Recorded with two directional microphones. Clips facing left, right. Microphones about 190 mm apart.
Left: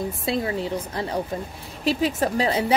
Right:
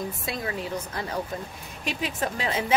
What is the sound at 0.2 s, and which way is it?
A woman's voice, 30° left (ahead or behind).